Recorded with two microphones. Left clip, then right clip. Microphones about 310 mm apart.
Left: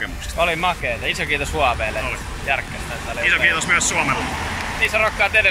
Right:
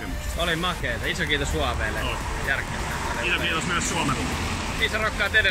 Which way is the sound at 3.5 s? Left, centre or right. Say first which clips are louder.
Left 7 dB; centre.